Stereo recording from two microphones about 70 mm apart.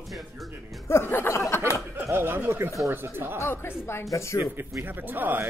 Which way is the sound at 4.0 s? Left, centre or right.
Left.